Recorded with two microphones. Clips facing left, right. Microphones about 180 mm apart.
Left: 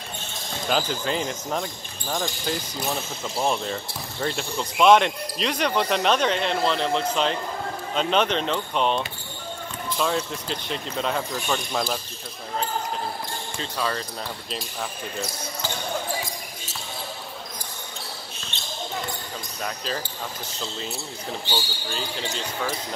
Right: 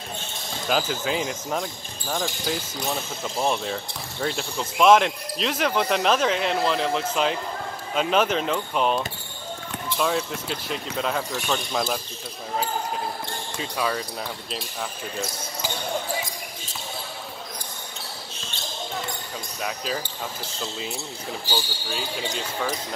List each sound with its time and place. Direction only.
0.7 s speech: 5° right (ahead or behind)
13.6 s speech: 5° right (ahead or behind)
19.6 s speech: 5° right (ahead or behind)
21.5 s speech: 5° right (ahead or behind)